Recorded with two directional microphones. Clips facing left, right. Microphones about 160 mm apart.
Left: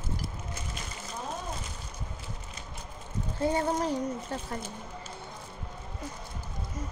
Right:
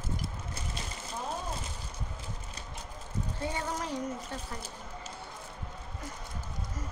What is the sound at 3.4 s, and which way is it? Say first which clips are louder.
Speech: left 9 dB; 35° left (ahead or behind).